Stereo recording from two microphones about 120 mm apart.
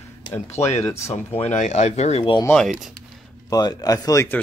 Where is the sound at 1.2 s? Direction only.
70° left (ahead or behind).